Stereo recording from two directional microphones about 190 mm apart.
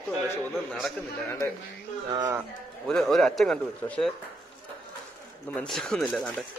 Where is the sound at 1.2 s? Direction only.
15° left (ahead or behind).